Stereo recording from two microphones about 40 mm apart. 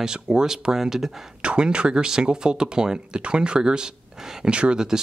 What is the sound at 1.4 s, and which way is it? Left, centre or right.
Speech, right.